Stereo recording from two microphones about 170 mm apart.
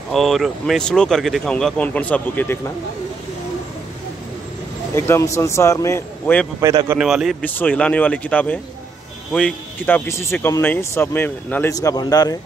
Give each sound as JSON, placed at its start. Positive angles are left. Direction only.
{"t": 0.1, "sound": "speech", "side_deg": 0}
{"t": 4.9, "sound": "speech", "side_deg": 15}
{"t": 6.6, "sound": "speech", "side_deg": -20}
{"t": 7.0, "sound": "speech", "side_deg": 0}
{"t": 7.4, "sound": "speech", "side_deg": 10}